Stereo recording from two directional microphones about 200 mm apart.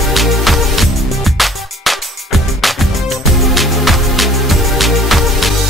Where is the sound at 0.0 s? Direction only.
Centre (ahead or behind).